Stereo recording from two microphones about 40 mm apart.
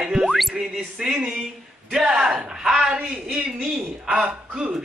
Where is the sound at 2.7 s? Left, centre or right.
Right.